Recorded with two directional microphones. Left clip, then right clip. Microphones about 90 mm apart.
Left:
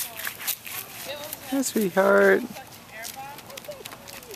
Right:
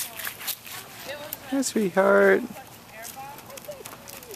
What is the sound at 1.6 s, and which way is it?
Speech, centre (ahead or behind).